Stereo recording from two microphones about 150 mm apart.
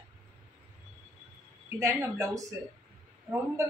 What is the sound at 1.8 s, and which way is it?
Speech, 20° right (ahead or behind).